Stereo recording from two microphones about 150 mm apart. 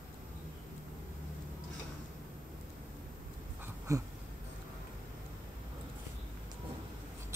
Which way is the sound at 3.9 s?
20° right (ahead or behind).